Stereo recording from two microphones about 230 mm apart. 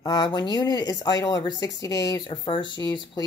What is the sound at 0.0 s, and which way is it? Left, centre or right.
Speech, centre.